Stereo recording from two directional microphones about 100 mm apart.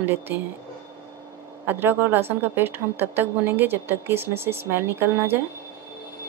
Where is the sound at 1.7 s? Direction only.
20° right (ahead or behind).